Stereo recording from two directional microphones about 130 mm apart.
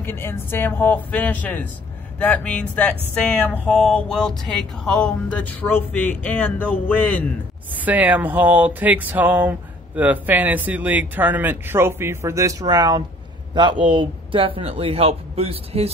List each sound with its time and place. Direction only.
0.0 s speech: 15° left (ahead or behind)
7.7 s a man's voice: 15° right (ahead or behind); by 15.9 s 50° right (ahead or behind)